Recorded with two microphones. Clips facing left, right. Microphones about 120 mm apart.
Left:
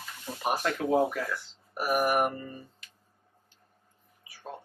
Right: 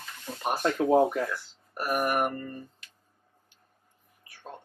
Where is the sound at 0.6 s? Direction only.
30° right (ahead or behind).